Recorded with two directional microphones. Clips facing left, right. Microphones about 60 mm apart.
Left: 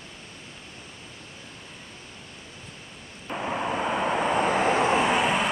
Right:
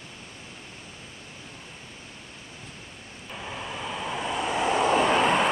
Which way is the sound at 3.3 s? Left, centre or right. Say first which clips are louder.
Left 8 dB; left.